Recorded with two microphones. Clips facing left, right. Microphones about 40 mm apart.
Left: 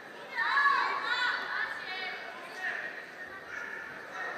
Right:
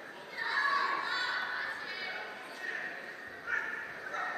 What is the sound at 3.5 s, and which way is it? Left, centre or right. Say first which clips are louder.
Bow-wow: right 7 dB; right.